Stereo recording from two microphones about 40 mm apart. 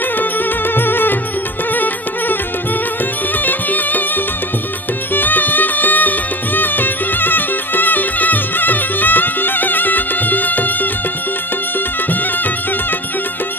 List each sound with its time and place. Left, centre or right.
0.7 s music: left
3.4 s music: left
5.1 s music: left